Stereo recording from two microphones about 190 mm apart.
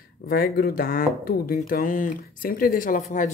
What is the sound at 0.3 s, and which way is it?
Speech, 55° left (ahead or behind).